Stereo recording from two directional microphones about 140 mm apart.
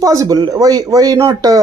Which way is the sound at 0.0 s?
25° right (ahead or behind).